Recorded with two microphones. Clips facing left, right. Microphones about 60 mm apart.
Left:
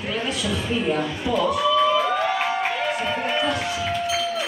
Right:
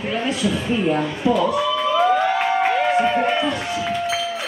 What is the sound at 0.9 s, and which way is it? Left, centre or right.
Speech, right.